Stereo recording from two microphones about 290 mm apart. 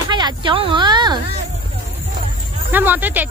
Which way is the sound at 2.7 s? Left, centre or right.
Centre.